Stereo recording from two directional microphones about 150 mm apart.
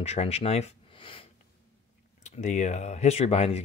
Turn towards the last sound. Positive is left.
turn(degrees=45)  # may be behind; listen again after turning